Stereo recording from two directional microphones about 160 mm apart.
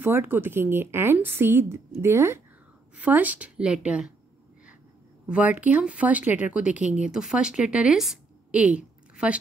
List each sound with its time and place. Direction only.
0.0 s a woman's voice: 15° right (ahead or behind)
5.3 s a woman's voice: 10° right (ahead or behind)